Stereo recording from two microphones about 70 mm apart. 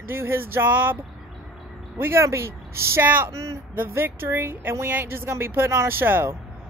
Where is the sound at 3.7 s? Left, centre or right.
Right.